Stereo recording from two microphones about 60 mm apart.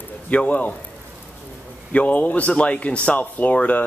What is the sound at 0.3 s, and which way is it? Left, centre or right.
Speech, left.